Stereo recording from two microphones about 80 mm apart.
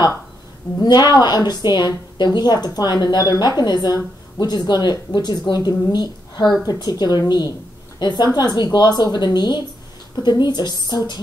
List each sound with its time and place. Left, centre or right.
0.7 s a woman's voice: left